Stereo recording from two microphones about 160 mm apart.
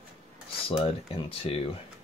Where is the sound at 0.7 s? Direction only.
35° left (ahead or behind).